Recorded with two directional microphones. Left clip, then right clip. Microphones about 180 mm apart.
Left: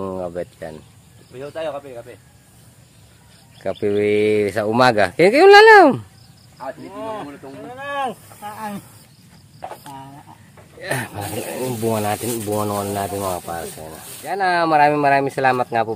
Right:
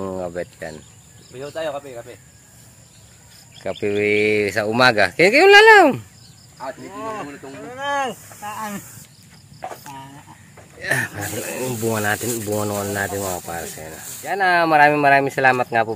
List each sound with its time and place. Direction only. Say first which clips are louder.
0.0 s speech: left 1 dB; 5° left (ahead or behind)
3.6 s speech: left 1 dB; 20° left (ahead or behind)
7.1 s speech: right 1 dB; 15° left (ahead or behind)
8.5 s speech: right 1 dB; 45° left (ahead or behind)
10.8 s speech: right 3 dB; 10° left (ahead or behind)
11.7 s speech: even; centre (ahead or behind)